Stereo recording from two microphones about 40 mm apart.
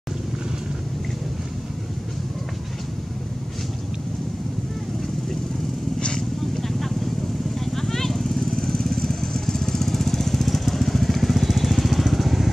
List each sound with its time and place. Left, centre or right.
5.9 s vehicle: left
7.6 s vehicle: centre
8.4 s lawn mower: centre